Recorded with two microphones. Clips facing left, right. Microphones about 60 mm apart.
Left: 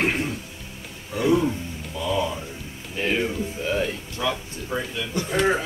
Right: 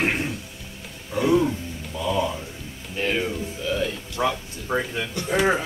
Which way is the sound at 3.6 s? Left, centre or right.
Left.